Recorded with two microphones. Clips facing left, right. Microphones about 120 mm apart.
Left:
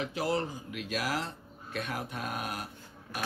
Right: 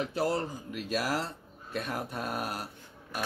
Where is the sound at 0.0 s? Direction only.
40° right (ahead or behind).